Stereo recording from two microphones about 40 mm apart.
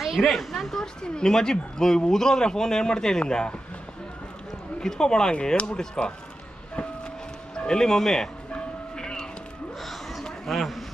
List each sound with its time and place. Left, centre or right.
0.2 s speech: centre
4.7 s a man's voice: centre
7.5 s speech: centre
8.5 s train: centre
9.8 s a sound: centre